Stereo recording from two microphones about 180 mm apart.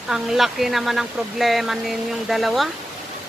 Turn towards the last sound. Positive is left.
turn(degrees=0)  # may be behind; listen again after turning